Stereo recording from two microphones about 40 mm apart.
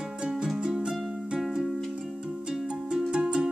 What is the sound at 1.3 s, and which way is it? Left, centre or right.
Music, centre.